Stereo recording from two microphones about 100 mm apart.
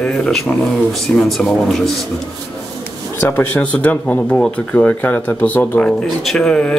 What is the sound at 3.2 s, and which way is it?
Speech, 20° left (ahead or behind).